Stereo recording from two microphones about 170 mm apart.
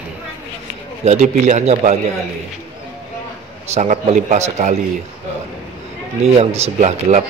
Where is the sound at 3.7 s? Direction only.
40° right (ahead or behind).